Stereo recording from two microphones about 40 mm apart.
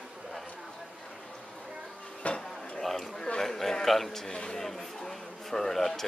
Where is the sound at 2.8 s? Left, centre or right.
Centre.